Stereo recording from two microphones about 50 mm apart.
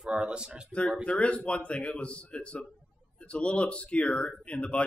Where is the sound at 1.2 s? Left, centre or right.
Left.